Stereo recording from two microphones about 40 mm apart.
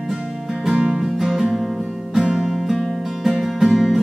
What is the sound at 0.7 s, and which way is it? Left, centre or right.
Music, right.